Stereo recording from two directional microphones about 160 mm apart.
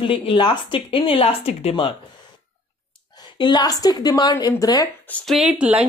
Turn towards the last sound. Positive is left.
turn(degrees=-10)  # may be behind; listen again after turning